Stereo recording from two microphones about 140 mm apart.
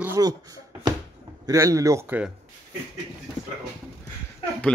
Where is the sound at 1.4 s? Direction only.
20° right (ahead or behind).